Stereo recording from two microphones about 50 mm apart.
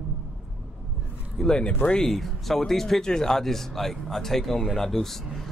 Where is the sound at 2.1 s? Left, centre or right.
Centre.